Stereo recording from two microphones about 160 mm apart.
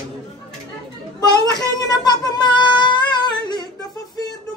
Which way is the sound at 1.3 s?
25° left (ahead or behind).